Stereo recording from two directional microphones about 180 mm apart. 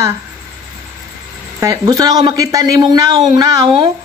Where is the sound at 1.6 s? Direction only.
20° right (ahead or behind).